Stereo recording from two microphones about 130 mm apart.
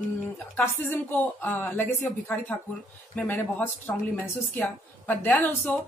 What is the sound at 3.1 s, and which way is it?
A woman's voice, 15° left (ahead or behind).